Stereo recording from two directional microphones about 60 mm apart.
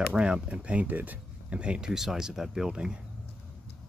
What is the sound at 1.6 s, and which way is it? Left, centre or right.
Speech, centre.